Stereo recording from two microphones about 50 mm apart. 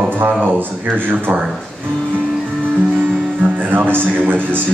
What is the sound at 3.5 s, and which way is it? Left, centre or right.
Speech, right.